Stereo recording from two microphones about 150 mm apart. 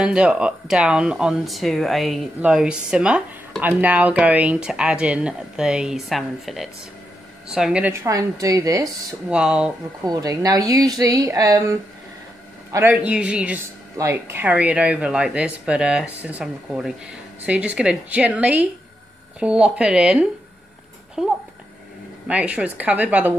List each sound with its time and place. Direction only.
0.0 s speech: 5° right (ahead or behind)
7.9 s speech: 20° right (ahead or behind)
9.3 s speech: 5° right (ahead or behind)
10.0 s speech: 25° right (ahead or behind)
12.9 s speech: 5° right (ahead or behind)